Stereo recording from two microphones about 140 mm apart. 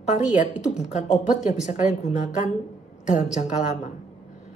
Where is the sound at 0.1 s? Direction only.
60° left (ahead or behind).